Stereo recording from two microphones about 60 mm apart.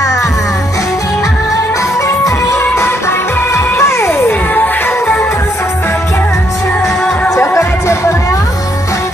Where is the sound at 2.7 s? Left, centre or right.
Left.